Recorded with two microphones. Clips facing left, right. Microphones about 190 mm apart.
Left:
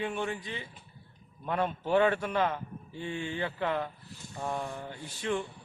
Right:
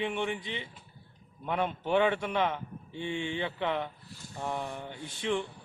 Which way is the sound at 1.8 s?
5° left (ahead or behind).